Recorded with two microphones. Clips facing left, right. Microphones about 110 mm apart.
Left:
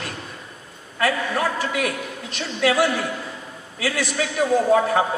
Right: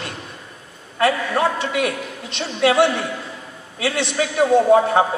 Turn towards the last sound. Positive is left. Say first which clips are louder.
# right 4 dB
turn(degrees=-30)  # may be behind; listen again after turning